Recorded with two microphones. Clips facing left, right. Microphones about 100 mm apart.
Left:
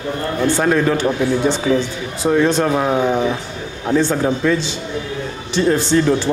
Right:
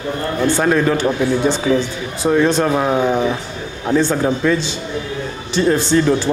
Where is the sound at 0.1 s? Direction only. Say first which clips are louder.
Even; 25° right (ahead or behind).